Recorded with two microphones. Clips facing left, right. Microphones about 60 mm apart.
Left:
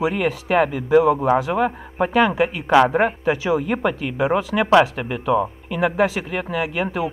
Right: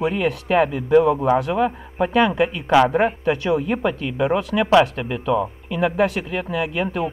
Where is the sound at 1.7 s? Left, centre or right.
Centre.